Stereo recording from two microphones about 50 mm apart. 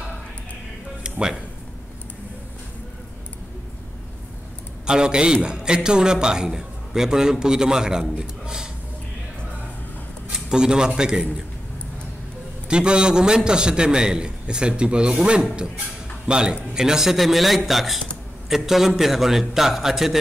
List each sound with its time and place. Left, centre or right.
1.0 s music: centre
4.8 s a man's voice: centre
10.5 s a man's voice: centre
12.6 s a man's voice: centre